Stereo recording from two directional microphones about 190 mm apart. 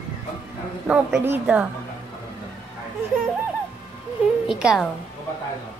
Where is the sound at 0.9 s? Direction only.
5° right (ahead or behind).